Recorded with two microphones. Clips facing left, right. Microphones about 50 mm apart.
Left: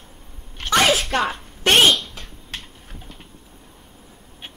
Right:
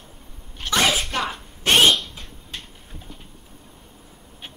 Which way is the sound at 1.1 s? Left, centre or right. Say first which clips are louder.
Left 4 dB; left.